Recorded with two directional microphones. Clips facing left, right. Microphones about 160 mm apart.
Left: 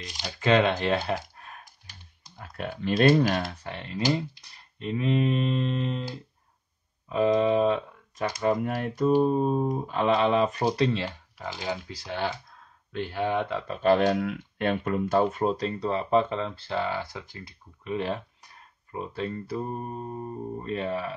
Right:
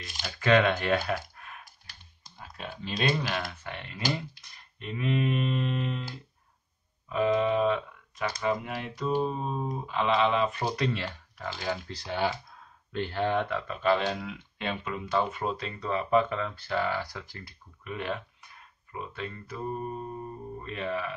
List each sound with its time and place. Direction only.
0.0 s speech: 20° left (ahead or behind); by 1.7 s 35° left (ahead or behind)
2.3 s speech: 55° left (ahead or behind)
3.5 s speech: 30° left (ahead or behind)
7.1 s speech: 35° left (ahead or behind)
11.3 s speech: 15° left (ahead or behind)
12.0 s speech: centre (ahead or behind)
13.5 s speech: 25° left (ahead or behind)
13.7 s speech: 50° left (ahead or behind); by 17.9 s 20° left (ahead or behind)
17.9 s speech: 35° left (ahead or behind)